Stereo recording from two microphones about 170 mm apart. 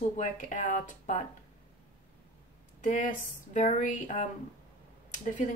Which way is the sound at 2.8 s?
50° left (ahead or behind).